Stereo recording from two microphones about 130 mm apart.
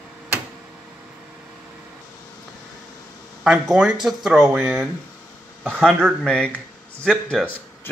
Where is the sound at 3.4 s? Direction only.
5° right (ahead or behind).